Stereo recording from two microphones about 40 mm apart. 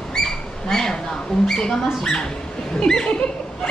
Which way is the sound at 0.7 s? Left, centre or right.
Centre.